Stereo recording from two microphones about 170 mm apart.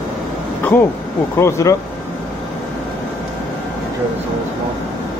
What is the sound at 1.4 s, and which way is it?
Speech, 20° left (ahead or behind).